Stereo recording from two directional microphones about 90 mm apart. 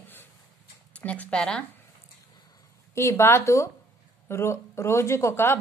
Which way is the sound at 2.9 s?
30° left (ahead or behind).